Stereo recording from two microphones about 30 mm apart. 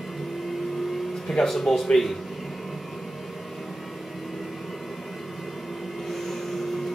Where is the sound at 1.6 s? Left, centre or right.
Centre.